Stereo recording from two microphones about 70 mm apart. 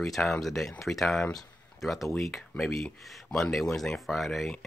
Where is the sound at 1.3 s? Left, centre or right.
Centre.